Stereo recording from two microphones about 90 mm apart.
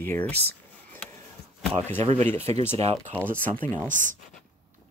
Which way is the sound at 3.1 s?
20° left (ahead or behind).